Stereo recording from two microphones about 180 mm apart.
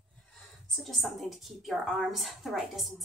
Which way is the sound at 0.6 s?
Centre (ahead or behind).